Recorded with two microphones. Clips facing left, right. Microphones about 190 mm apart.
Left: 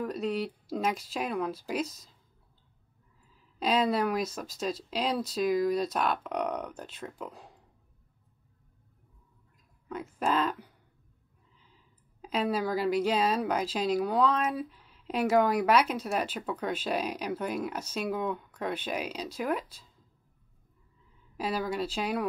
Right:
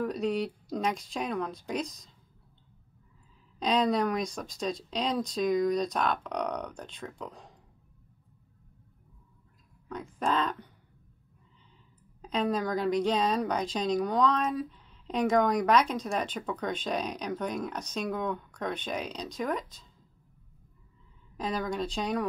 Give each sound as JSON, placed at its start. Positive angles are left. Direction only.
{"t": 0.0, "sound": "speech", "side_deg": 0}
{"t": 3.5, "sound": "speech", "side_deg": 5}
{"t": 9.8, "sound": "a woman's voice", "side_deg": 5}
{"t": 12.2, "sound": "a woman's voice", "side_deg": 5}
{"t": 21.4, "sound": "a woman's voice", "side_deg": 5}